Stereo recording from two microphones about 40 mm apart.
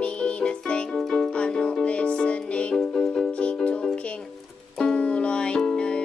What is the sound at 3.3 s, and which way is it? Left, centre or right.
Music, left.